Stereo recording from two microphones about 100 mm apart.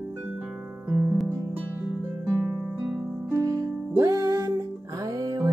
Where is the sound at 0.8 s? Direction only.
15° right (ahead or behind).